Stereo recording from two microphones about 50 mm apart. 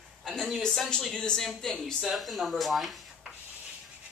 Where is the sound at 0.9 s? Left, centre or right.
Centre.